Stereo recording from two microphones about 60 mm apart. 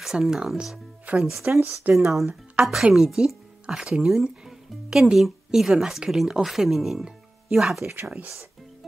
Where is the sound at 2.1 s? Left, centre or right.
Centre.